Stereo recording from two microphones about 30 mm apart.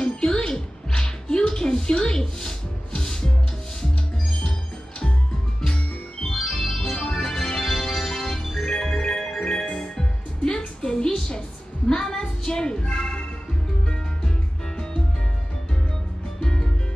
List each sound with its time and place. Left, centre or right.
0.0 s music: left
5.7 s music: left
6.5 s organ: centre
6.8 s music: left; by 8.5 s centre
8.5 s music: left
10.8 s a sound: left
11.9 s music: left
16.3 s music: left